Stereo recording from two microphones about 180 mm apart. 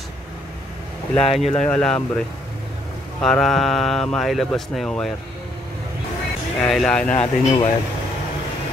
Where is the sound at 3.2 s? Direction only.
Centre (ahead or behind).